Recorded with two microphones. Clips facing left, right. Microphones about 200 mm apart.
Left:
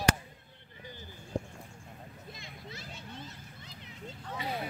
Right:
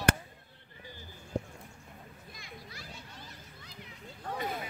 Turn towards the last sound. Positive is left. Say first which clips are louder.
# right 1 dB
turn(degrees=-50)  # may be behind; listen again after turning